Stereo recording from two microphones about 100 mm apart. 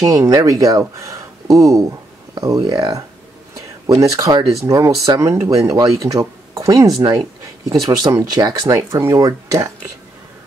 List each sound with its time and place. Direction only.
0.3 s speech: 35° right (ahead or behind)